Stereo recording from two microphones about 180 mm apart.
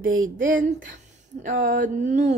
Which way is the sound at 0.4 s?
50° right (ahead or behind).